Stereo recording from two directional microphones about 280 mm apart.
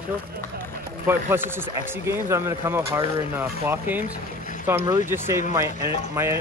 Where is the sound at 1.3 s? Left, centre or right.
Centre.